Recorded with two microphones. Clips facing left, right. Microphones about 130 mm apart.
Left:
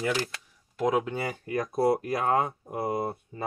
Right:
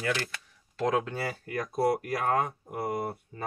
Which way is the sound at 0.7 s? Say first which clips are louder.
Left 2 dB; 15° left (ahead or behind).